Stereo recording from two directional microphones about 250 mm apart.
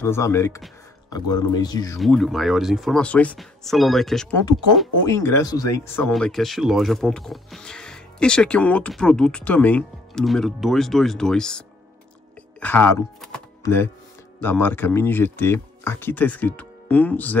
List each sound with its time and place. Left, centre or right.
0.0 s speech: centre
2.0 s speech: centre
5.0 s speech: centre
6.1 s speech: centre
12.5 s chopping: centre
13.6 s music: centre
14.4 s speech: centre